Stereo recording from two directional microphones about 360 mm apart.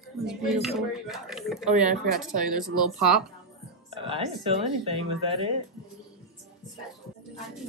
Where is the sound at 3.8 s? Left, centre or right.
Centre.